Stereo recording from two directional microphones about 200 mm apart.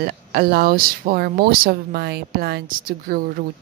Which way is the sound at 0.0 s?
50° right (ahead or behind).